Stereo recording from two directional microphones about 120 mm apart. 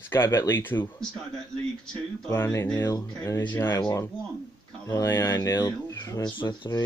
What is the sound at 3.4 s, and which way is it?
Music, 15° left (ahead or behind).